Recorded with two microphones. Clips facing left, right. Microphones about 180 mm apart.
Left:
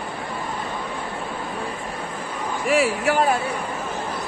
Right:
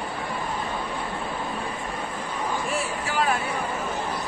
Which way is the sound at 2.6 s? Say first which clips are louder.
Left 9 dB; 90° left.